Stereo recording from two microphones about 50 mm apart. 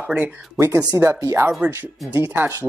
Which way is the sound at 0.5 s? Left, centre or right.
Right.